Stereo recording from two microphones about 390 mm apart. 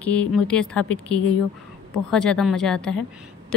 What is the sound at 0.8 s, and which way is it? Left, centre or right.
Speech, left.